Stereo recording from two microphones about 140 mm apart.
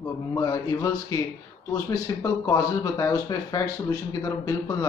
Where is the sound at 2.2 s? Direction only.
25° left (ahead or behind).